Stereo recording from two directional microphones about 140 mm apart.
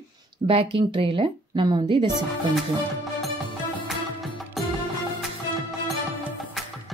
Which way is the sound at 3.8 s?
Centre (ahead or behind).